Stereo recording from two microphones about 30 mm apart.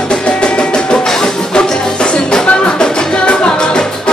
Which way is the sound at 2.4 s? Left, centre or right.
Left.